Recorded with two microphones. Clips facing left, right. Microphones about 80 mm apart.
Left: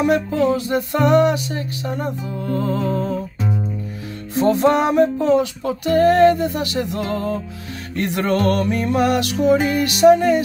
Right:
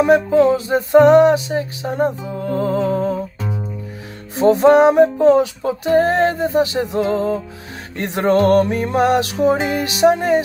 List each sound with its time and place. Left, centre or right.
0.0 s music: right
4.8 s music: right